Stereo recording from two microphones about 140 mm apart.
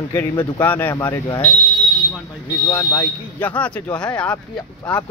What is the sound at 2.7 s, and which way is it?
Speech, 20° left (ahead or behind).